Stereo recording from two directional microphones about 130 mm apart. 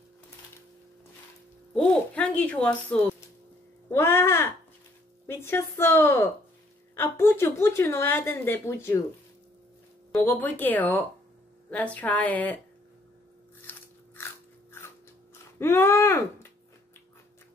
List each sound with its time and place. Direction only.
1.7 s a sound: 10° left (ahead or behind)
3.9 s a woman's voice: 20° left (ahead or behind)
10.1 s speech: 15° left (ahead or behind)
13.7 s biting: 15° left (ahead or behind)
15.6 s a woman's voice: 20° left (ahead or behind)